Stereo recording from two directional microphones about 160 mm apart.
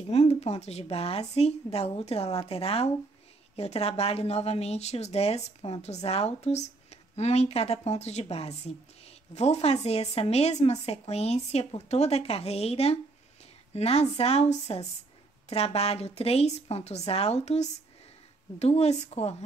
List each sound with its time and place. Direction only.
0.1 s speech: 45° left (ahead or behind)